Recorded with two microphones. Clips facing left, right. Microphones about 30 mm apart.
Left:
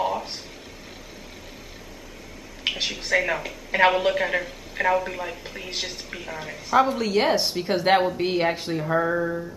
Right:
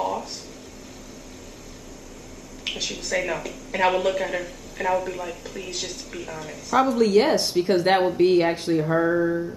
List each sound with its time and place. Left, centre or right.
0.0 s a sound: left
2.6 s a woman's voice: left
7.0 s a woman's voice: centre